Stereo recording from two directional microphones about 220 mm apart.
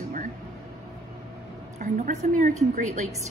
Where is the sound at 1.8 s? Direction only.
35° right (ahead or behind).